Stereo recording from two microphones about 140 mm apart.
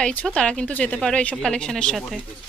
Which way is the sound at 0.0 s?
10° left (ahead or behind).